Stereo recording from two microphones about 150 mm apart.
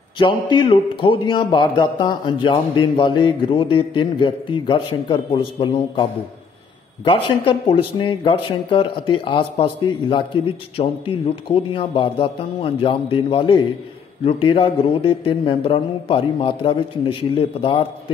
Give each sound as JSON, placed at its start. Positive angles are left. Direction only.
{"t": 0.2, "sound": "speech", "side_deg": 30}
{"t": 7.1, "sound": "speech", "side_deg": 35}